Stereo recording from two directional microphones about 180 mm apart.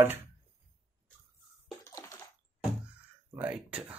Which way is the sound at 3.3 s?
10° right (ahead or behind).